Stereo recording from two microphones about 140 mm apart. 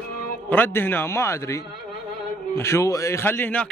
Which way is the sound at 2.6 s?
20° left (ahead or behind).